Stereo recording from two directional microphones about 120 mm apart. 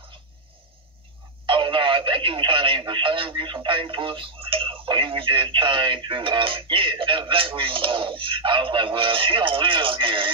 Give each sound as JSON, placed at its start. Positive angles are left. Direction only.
{"t": 1.4, "sound": "telephone", "side_deg": -45}
{"t": 2.8, "sound": "speech", "side_deg": -45}